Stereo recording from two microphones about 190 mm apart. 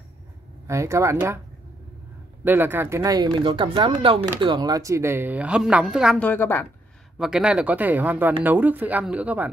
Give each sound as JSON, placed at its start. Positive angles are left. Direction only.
{"t": 0.7, "sound": "a woman's voice", "side_deg": -15}
{"t": 2.4, "sound": "a woman's voice", "side_deg": -10}
{"t": 6.1, "sound": "a woman's voice", "side_deg": 10}
{"t": 7.2, "sound": "a woman's voice", "side_deg": -5}